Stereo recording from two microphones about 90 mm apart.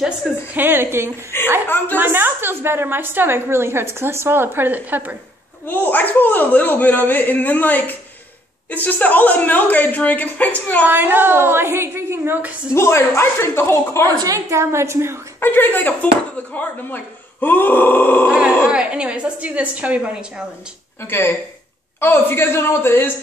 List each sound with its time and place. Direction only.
0.3 s a woman's voice: centre (ahead or behind)
0.6 s a woman's voice: 25° right (ahead or behind)
1.3 s speech: 25° left (ahead or behind)
2.0 s a woman's voice: 25° right (ahead or behind)
5.7 s speech: 20° left (ahead or behind)
10.9 s a woman's voice: 20° right (ahead or behind)
12.7 s speech: 30° left (ahead or behind)
14.0 s a woman's voice: 40° right (ahead or behind)
15.4 s speech: 25° left (ahead or behind)
18.3 s a woman's voice: 10° right (ahead or behind)
21.0 s speech: 25° left (ahead or behind)